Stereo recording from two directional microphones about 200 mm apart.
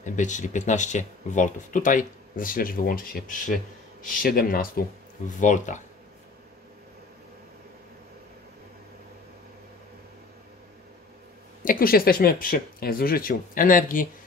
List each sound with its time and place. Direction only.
0.0 s speech: 40° left (ahead or behind)
11.6 s speech: 45° left (ahead or behind)